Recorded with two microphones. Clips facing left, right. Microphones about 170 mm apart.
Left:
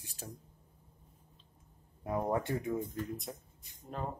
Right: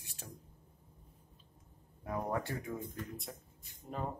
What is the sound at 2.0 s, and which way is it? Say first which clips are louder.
Speech: left 4 dB; 25° left (ahead or behind).